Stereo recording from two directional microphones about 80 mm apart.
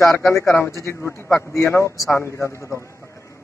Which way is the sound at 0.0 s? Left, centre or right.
Left.